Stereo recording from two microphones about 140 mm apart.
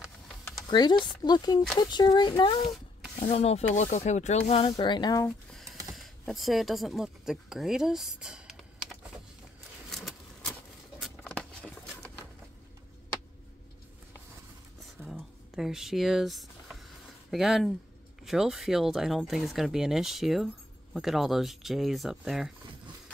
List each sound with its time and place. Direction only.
0.6 s speech: 30° left (ahead or behind)
3.2 s speech: 50° left (ahead or behind); by 5.2 s 30° left (ahead or behind)
5.5 s music: centre (ahead or behind)
5.9 s speech: centre (ahead or behind)
9.8 s a sound: 5° left (ahead or behind)
11.0 s patter: 5° left (ahead or behind)
15.0 s speech: 5° right (ahead or behind)